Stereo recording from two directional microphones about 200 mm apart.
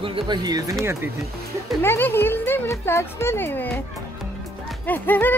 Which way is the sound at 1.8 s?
10° left (ahead or behind).